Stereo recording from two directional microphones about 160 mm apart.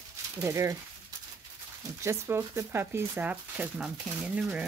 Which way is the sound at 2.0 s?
15° right (ahead or behind).